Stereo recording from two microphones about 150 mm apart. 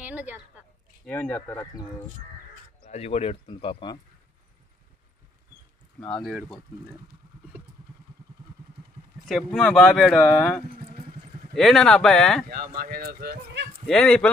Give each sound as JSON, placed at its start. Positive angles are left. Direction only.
{"t": 0.0, "sound": "a sound", "side_deg": -10}
{"t": 1.0, "sound": "speech", "side_deg": 10}
{"t": 2.9, "sound": "speech", "side_deg": 45}
{"t": 5.9, "sound": "speech", "side_deg": 5}
{"t": 9.2, "sound": "speech", "side_deg": 0}
{"t": 12.7, "sound": "speech", "side_deg": -85}
{"t": 13.8, "sound": "speech", "side_deg": 5}